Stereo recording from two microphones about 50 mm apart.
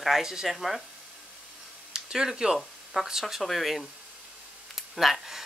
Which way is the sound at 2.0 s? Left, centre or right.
Centre.